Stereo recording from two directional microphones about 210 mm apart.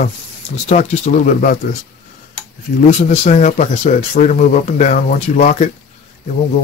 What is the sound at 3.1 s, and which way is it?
Speech, 35° left (ahead or behind).